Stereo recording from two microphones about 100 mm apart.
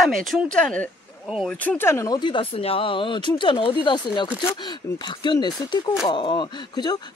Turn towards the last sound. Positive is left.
turn(degrees=50)  # may be behind; listen again after turning